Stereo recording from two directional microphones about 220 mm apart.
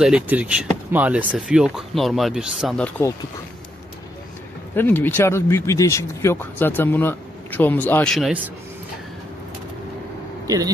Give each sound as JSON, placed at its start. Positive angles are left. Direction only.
{"t": 0.0, "sound": "speech", "side_deg": -5}
{"t": 4.7, "sound": "speech", "side_deg": 10}
{"t": 10.4, "sound": "speech", "side_deg": -15}